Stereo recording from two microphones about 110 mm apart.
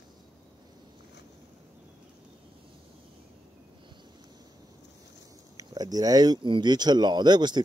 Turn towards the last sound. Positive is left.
turn(degrees=-40)  # may be behind; listen again after turning